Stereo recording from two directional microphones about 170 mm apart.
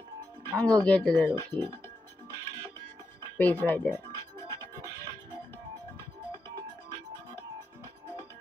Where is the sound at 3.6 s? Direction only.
10° left (ahead or behind).